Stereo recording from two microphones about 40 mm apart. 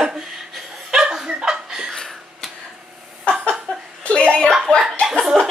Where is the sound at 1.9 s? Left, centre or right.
Centre.